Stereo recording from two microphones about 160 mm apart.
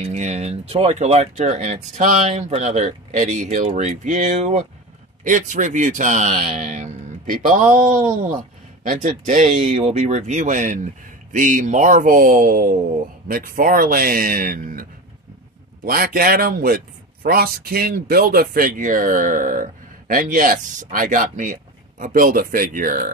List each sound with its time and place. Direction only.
0.0 s speech: 45° right (ahead or behind)